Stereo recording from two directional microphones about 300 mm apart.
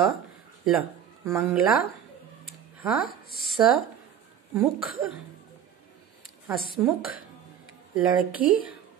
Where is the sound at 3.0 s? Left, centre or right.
Left.